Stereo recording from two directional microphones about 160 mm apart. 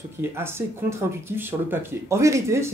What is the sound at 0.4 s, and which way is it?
Speech, 15° right (ahead or behind).